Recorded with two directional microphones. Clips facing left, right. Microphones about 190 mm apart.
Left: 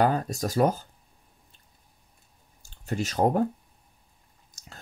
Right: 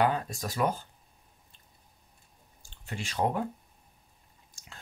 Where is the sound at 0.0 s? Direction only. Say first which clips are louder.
Left 4 dB; 40° left (ahead or behind).